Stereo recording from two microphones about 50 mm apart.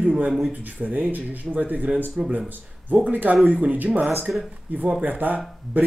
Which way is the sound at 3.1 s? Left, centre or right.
Right.